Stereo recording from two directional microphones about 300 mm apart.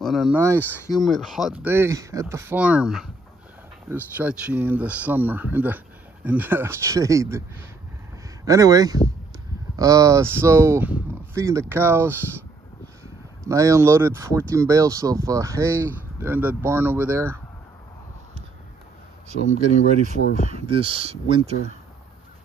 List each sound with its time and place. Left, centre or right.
0.0 s speech: centre
0.6 s speech: centre
1.0 s speech: centre
8.5 s speech: centre
19.8 s speech: left
20.4 s speech: centre